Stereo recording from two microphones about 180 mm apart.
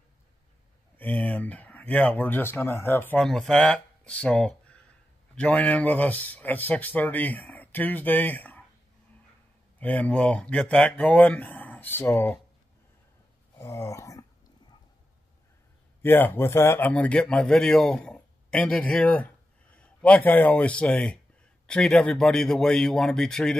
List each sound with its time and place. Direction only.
0.9 s speech: 10° left (ahead or behind)
9.8 s speech: 10° left (ahead or behind)
13.6 s a sound: 20° left (ahead or behind)
16.0 s a man's voice: 10° left (ahead or behind)